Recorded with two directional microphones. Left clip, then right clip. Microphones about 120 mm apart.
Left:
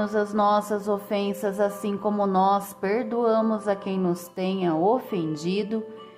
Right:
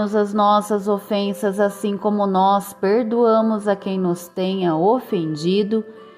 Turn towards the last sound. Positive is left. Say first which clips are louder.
# right 8 dB
turn(degrees=-35)  # may be behind; listen again after turning